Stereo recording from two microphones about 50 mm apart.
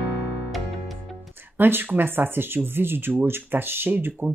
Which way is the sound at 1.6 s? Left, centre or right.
Right.